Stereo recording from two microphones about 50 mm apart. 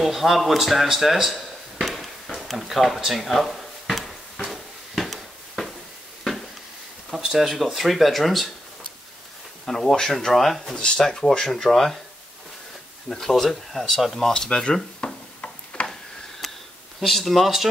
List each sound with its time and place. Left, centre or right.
0.0 s speech: centre
1.8 s chop: centre
3.2 s drawer open or close: centre
4.5 s a sound: centre
7.1 s a sound: centre
7.6 s speech: centre
9.7 s speech: centre
10.8 s speech: centre
13.1 s speech: centre
15.4 s a sound: left
15.9 s a sound: centre
17.0 s speech: centre